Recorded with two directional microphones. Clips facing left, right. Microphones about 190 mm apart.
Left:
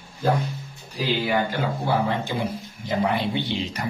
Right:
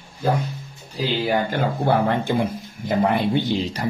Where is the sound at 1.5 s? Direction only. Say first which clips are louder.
Right 4 dB; 55° right (ahead or behind).